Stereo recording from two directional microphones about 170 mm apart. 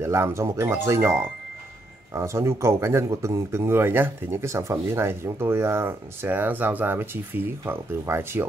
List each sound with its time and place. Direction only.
0.0 s speech: 15° right (ahead or behind)